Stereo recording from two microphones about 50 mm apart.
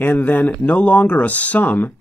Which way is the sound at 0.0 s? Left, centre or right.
Left.